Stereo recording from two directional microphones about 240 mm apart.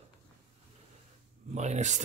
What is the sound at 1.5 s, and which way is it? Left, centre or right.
Speech, right.